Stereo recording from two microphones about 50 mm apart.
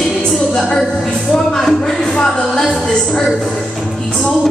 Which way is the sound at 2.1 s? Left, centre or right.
Centre.